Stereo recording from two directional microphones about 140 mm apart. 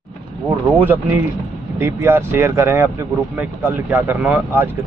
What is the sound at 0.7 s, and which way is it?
Speech, 15° right (ahead or behind).